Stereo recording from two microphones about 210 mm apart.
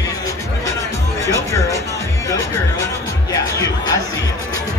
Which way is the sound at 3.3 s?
15° left (ahead or behind).